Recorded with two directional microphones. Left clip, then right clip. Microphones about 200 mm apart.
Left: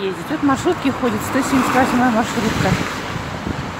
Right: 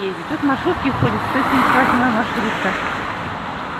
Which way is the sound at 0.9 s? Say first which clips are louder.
Even; 15° left (ahead or behind).